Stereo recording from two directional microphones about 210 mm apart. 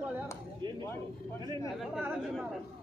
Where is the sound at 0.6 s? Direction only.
20° right (ahead or behind).